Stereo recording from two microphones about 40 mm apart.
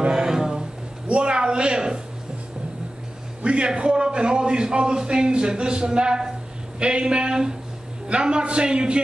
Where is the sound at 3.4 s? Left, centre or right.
Right.